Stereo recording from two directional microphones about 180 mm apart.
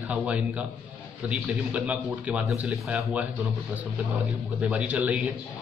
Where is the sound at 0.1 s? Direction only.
5° right (ahead or behind).